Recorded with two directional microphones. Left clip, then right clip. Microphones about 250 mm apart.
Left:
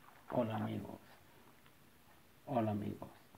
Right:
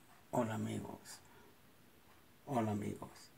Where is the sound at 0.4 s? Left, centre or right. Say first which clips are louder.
Left 1 dB; centre.